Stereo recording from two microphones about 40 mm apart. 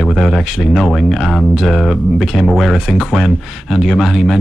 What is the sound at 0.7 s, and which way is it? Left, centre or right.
Speech, centre.